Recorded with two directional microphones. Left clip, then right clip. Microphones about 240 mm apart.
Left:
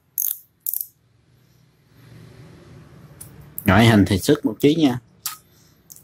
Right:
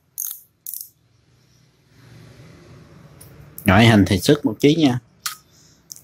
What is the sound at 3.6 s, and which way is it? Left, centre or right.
Speech, centre.